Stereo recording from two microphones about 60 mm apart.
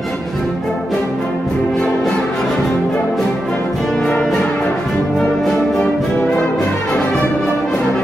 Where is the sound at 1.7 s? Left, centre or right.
Centre.